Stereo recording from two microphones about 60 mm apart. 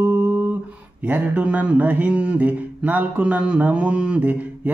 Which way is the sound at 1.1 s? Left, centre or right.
Right.